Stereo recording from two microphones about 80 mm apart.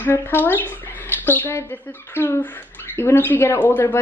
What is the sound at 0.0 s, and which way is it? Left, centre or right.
Speech, left.